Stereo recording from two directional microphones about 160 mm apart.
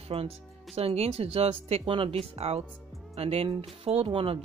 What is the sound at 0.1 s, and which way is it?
Speech, 35° right (ahead or behind).